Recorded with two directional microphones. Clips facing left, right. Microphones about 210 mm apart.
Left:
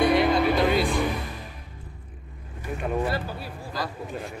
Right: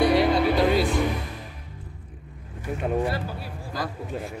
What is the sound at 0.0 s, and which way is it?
Music, 35° right (ahead or behind).